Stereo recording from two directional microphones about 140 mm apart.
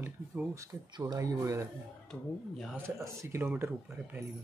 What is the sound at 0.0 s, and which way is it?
Speech, 15° right (ahead or behind).